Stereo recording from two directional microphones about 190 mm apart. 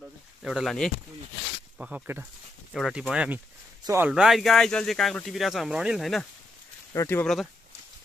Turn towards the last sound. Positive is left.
turn(degrees=15)  # may be behind; listen again after turning